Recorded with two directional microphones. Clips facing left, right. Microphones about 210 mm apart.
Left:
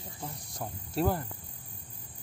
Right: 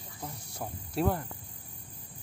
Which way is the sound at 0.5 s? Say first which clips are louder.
Even; 5° right (ahead or behind).